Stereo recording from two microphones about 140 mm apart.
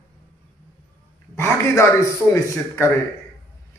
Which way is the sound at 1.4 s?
20° left (ahead or behind).